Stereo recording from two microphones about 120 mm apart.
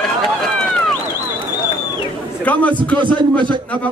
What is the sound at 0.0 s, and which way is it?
Run, centre (ahead or behind).